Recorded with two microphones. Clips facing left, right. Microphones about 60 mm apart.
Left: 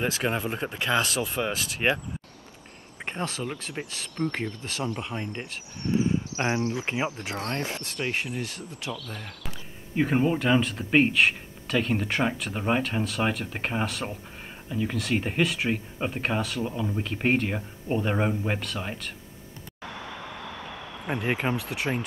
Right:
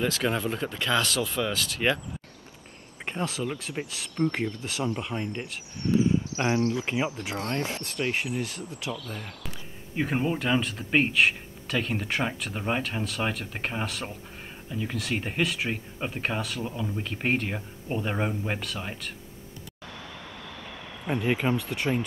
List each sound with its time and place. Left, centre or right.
0.0 s speech: left
3.2 s speech: centre
5.0 s speech: centre
8.3 s speech: centre
9.1 s speech: centre
21.1 s speech: left